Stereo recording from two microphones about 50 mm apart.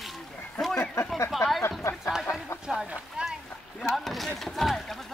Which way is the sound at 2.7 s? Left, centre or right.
Centre.